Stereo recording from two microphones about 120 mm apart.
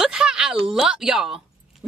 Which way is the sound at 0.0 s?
5° right (ahead or behind).